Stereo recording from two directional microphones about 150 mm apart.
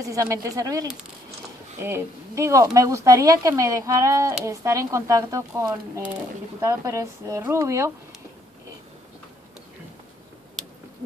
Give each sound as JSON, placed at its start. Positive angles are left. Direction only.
{"t": 0.0, "sound": "speech", "side_deg": -20}